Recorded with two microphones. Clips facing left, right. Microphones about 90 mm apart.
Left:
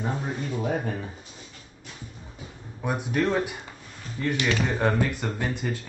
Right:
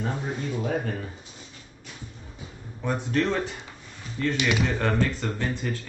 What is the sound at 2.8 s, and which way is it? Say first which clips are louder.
Speech: even; 10° left (ahead or behind).